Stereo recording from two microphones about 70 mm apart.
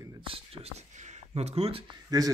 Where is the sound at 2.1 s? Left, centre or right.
Right.